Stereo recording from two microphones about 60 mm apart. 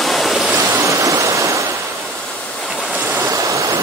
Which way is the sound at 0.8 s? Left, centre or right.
Right.